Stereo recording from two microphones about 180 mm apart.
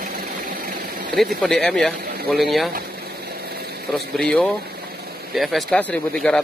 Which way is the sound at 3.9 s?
5° left (ahead or behind).